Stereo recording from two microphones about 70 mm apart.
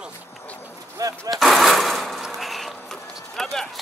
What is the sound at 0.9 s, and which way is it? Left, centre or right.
Speech, right.